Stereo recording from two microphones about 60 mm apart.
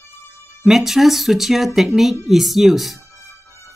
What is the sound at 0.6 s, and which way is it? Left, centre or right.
Speech, centre.